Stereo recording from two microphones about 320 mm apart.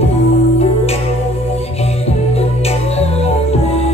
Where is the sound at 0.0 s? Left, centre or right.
Centre.